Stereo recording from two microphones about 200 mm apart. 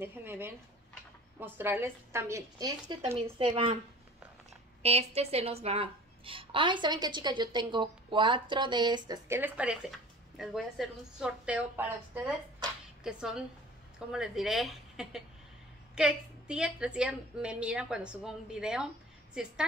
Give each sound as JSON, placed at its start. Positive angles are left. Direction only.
{"t": 0.0, "sound": "a woman's voice", "side_deg": -10}
{"t": 4.8, "sound": "a woman's voice", "side_deg": -30}